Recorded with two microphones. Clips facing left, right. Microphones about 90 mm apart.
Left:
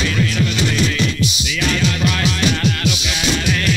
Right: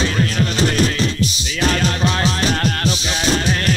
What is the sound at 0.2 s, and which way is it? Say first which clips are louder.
Music: even; 40° right (ahead or behind).